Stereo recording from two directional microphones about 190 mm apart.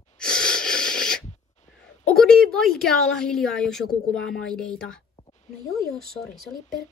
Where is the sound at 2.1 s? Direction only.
Centre (ahead or behind).